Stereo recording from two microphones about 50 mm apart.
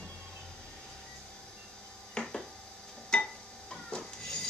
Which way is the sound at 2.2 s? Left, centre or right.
Left.